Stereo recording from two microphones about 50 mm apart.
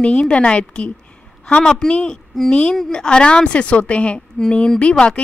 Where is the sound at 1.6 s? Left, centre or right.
Centre.